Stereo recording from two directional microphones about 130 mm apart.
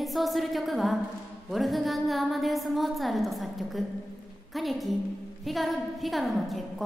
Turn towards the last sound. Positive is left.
turn(degrees=0)  # may be behind; listen again after turning